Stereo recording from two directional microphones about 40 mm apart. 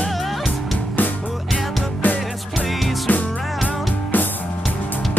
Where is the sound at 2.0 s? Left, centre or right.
Left.